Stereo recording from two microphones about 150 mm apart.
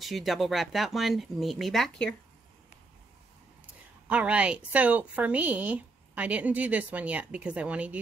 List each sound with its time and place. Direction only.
0.0 s speech: centre (ahead or behind)
4.1 s a woman's voice: 10° right (ahead or behind)